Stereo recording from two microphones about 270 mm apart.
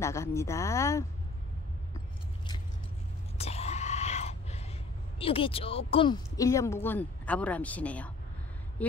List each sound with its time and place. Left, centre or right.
0.0 s speech: centre
3.3 s whispering: left
5.2 s speech: left